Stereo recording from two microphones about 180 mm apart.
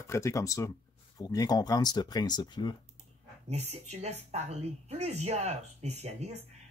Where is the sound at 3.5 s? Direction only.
35° right (ahead or behind).